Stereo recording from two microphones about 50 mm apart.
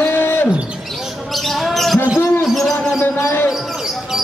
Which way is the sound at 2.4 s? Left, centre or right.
Centre.